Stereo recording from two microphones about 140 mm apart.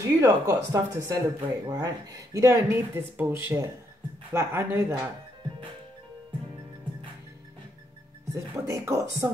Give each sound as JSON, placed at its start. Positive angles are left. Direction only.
{"t": 0.0, "sound": "speech", "side_deg": -25}
{"t": 8.3, "sound": "speech", "side_deg": -20}